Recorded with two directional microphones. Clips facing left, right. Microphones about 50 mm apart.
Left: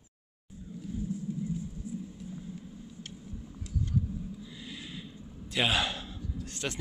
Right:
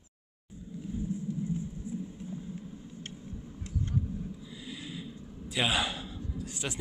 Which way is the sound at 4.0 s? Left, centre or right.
Centre.